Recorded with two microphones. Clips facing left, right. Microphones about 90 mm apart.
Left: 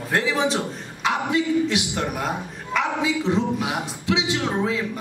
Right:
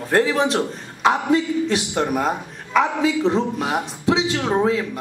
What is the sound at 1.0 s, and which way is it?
A woman's voice, 35° right (ahead or behind).